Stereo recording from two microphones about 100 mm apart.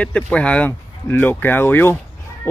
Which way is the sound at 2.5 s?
25° left (ahead or behind).